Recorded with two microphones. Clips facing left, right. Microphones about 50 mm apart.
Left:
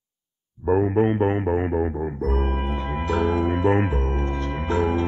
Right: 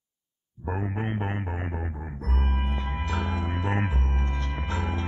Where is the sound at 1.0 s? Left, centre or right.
Left.